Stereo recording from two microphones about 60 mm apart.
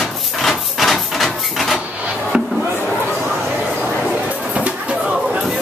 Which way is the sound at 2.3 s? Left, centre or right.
Centre.